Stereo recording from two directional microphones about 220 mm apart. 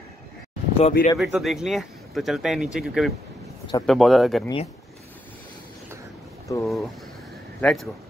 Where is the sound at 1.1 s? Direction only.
Centre (ahead or behind).